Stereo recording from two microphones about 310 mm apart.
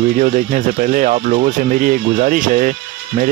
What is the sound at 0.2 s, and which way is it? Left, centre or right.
Speech, right.